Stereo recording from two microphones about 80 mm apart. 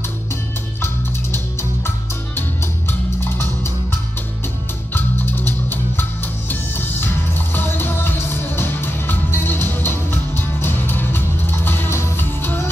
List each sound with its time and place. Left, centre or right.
0.7 s music: left
4.9 s music: left